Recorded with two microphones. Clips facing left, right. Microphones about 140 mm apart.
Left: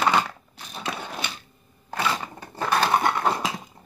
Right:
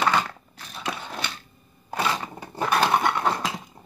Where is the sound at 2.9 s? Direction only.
10° left (ahead or behind).